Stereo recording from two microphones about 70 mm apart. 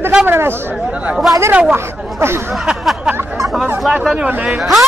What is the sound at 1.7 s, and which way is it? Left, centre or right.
Speech, right.